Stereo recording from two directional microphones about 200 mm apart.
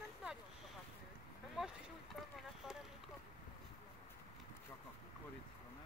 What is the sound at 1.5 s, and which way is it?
Speech, centre (ahead or behind).